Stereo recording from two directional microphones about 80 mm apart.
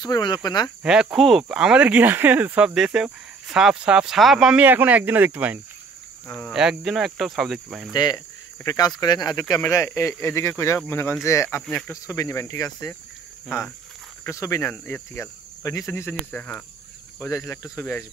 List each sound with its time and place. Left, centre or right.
0.0 s speech: left
1.1 s speech: centre
1.5 s speech: centre
4.6 s speech: centre
6.5 s speech: centre
7.9 s speech: left
9.8 s speech: left
14.2 s speech: left
14.7 s speech: left
15.6 s speech: left
16.1 s speech: centre
17.2 s speech: left